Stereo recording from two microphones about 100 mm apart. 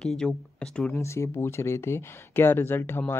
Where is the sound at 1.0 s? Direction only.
25° left (ahead or behind).